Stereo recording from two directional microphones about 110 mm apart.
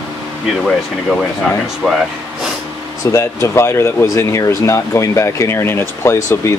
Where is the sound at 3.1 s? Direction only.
25° left (ahead or behind).